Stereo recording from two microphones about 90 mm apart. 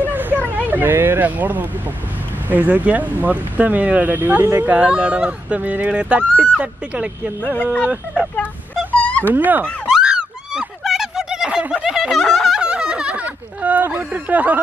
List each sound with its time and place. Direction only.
0.1 s hubbub: 20° right (ahead or behind)
0.7 s speech: 20° right (ahead or behind); by 8.3 s 5° right (ahead or behind)
8.9 s cat: 15° left (ahead or behind)
9.3 s speech: 20° right (ahead or behind)
9.8 s a sound: 5° right (ahead or behind)
12.5 s a sound: 10° right (ahead or behind)